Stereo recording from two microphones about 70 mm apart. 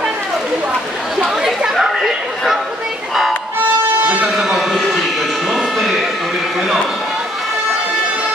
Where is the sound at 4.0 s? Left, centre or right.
Right.